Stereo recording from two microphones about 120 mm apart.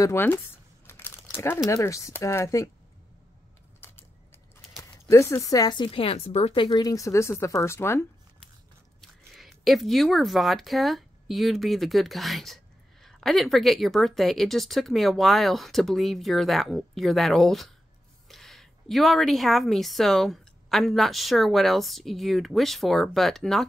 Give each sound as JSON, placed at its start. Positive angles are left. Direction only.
{"t": 0.0, "sound": "speech", "side_deg": 20}
{"t": 0.8, "sound": "crumpling", "side_deg": 20}
{"t": 1.7, "sound": "speech", "side_deg": 25}
{"t": 3.8, "sound": "keys jangling", "side_deg": 20}
{"t": 5.1, "sound": "speech", "side_deg": 25}
{"t": 5.9, "sound": "speech", "side_deg": 55}
{"t": 9.0, "sound": "a woman's voice", "side_deg": 0}